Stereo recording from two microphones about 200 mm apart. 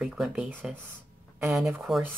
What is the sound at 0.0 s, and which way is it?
Speech, centre (ahead or behind).